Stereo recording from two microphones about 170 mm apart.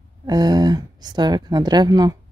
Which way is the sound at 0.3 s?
25° right (ahead or behind).